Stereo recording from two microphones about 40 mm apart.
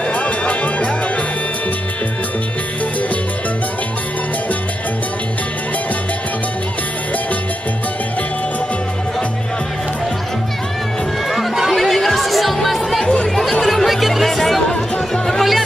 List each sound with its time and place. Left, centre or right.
0.1 s music: left
11.2 s music: centre